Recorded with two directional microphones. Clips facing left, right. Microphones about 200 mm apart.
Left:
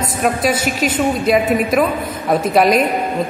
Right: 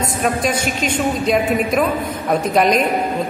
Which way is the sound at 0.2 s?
5° left (ahead or behind).